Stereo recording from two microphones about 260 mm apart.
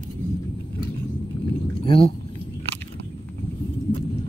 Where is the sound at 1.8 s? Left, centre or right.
Left.